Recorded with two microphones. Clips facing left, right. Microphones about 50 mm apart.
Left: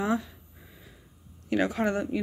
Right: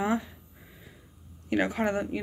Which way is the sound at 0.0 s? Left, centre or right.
Right.